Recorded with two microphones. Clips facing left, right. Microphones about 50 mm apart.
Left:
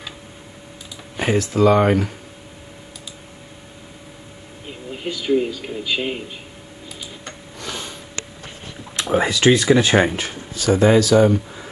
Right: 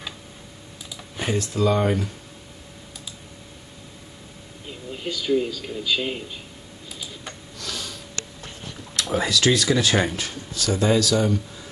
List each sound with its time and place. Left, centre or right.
1.1 s speech: centre
1.6 s speech: left
4.6 s a man's voice: centre
7.5 s sniff: left
8.9 s speech: left